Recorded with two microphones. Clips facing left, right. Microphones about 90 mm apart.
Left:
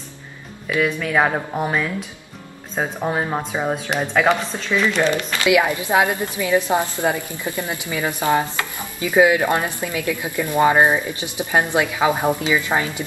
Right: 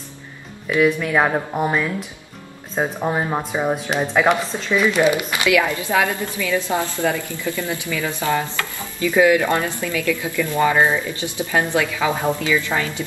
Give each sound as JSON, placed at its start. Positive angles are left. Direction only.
{"t": 0.7, "sound": "speech", "side_deg": 0}
{"t": 5.5, "sound": "stir", "side_deg": 20}